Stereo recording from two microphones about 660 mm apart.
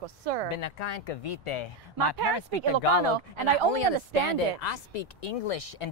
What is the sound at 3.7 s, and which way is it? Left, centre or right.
Speech, left.